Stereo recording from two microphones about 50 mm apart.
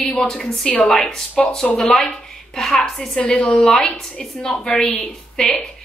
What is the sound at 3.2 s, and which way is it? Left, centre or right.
A woman's voice, left.